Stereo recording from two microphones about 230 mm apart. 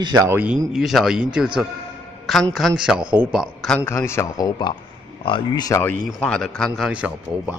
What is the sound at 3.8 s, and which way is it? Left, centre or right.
Speech, centre.